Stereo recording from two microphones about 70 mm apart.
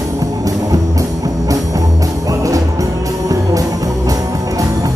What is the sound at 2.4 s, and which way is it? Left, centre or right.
Music, right.